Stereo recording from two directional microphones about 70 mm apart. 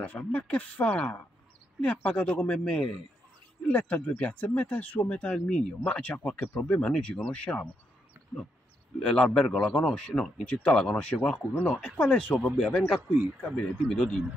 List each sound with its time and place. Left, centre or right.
0.0 s speech: left
3.6 s speech: centre
9.0 s speech: centre
11.3 s speech: left